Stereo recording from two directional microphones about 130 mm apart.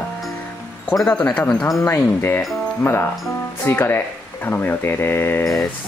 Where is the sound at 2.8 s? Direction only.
15° left (ahead or behind).